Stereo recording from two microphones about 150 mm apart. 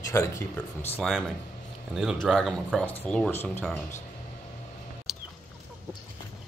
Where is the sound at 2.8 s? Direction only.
10° left (ahead or behind).